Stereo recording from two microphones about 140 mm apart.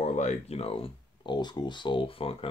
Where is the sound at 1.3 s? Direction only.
30° left (ahead or behind).